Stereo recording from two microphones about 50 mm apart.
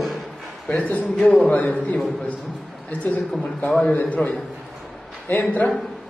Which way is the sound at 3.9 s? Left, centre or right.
Left.